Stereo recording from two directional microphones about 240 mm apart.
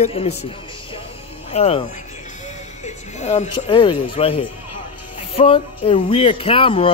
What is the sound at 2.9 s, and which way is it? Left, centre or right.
Speech, left.